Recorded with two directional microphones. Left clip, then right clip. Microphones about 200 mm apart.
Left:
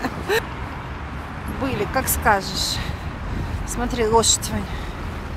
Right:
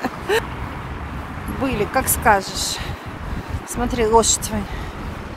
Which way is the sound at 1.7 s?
10° right (ahead or behind).